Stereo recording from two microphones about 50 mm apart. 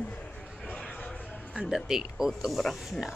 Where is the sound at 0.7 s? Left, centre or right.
Left.